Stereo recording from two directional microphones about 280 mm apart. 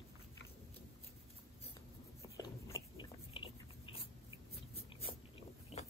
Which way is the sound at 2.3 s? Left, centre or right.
Centre.